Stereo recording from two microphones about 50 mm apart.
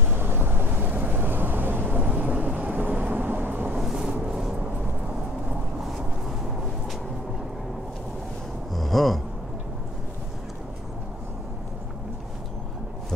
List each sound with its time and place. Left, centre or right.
0.0 s vehicle: right
3.7 s vehicle: centre
4.3 s music: centre
8.7 s gasp: centre